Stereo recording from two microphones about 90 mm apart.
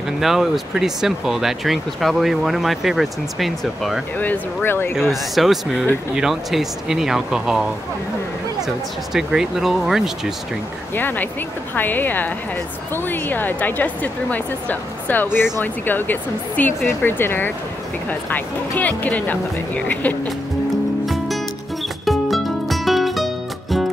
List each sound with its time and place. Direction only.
0.2 s speech: 5° right (ahead or behind)
4.2 s a woman's voice: 20° left (ahead or behind)
5.1 s speech: centre (ahead or behind)
8.6 s speech: 5° right (ahead or behind)
11.0 s a woman's voice: 20° left (ahead or behind)
21.0 s music: centre (ahead or behind)